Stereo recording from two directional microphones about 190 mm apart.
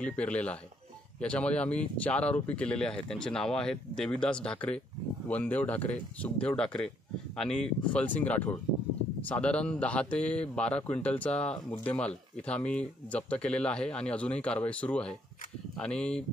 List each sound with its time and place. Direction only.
0.0 s speech: 5° left (ahead or behind)